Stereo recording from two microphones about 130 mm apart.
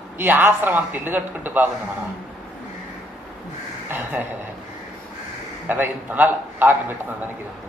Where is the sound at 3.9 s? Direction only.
15° right (ahead or behind).